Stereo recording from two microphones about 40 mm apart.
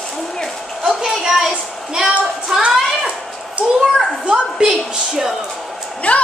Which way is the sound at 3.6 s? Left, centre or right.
Right.